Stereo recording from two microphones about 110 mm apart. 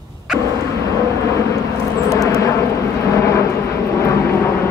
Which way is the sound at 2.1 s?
30° left (ahead or behind).